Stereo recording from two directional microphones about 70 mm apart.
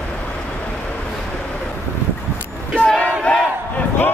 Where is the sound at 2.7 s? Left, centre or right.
Centre.